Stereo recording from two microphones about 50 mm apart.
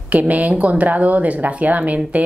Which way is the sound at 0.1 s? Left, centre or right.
Right.